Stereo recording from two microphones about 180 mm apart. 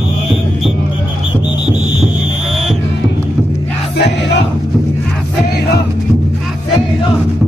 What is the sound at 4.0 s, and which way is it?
Crowd, 70° left (ahead or behind).